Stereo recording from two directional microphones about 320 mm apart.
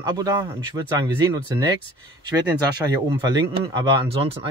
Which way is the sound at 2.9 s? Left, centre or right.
Centre.